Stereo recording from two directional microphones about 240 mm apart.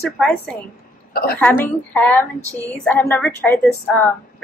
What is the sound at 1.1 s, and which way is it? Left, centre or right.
Speech, left.